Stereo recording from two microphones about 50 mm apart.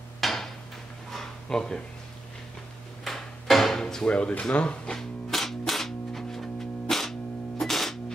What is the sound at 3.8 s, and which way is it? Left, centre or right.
Speech, centre.